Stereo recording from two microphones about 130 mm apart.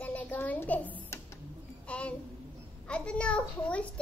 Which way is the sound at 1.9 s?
10° left (ahead or behind).